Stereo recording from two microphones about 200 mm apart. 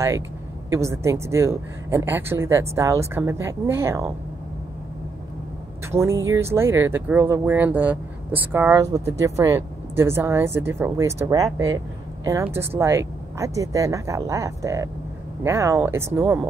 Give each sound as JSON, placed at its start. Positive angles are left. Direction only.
{"t": 0.7, "sound": "speech", "side_deg": -15}
{"t": 5.9, "sound": "speech", "side_deg": -15}